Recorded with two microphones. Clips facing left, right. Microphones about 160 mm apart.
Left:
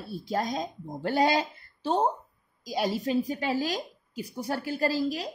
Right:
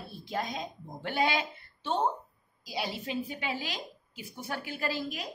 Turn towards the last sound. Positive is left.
turn(degrees=35)  # may be behind; listen again after turning